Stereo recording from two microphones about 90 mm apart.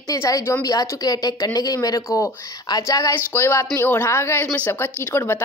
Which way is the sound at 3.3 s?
30° left (ahead or behind).